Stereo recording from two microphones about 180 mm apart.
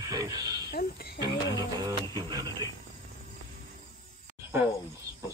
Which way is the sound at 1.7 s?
25° right (ahead or behind).